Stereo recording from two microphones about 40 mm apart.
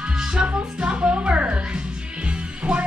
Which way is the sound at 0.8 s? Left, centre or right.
Right.